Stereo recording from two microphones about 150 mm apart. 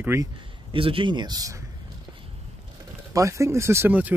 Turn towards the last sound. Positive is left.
turn(degrees=-10)  # may be behind; listen again after turning